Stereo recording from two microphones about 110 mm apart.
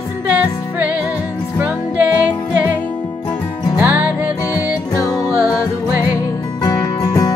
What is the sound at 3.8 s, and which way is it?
Music, 15° right (ahead or behind).